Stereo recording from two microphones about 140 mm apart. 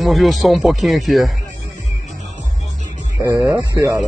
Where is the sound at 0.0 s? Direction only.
Centre (ahead or behind).